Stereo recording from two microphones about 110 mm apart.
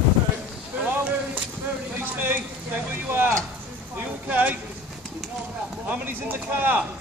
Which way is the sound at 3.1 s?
20° right (ahead or behind).